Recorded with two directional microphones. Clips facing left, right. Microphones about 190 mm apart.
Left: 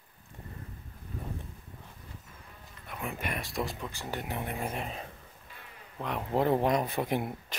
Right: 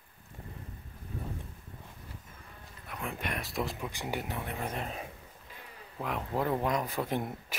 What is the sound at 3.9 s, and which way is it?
Speech, 15° right (ahead or behind).